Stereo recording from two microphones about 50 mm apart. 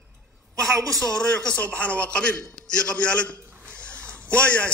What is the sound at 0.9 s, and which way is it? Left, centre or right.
A man's voice, centre.